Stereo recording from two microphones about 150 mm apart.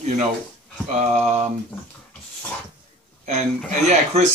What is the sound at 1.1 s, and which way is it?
Speech, 45° right (ahead or behind).